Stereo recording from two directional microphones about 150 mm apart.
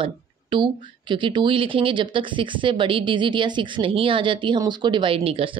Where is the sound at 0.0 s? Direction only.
30° right (ahead or behind).